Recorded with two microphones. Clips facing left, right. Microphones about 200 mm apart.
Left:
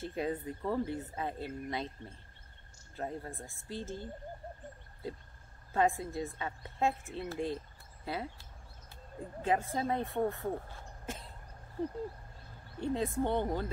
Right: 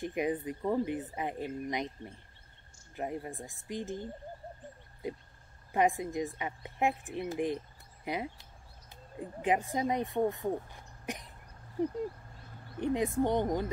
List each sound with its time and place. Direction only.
0.0 s a woman's voice: 15° right (ahead or behind)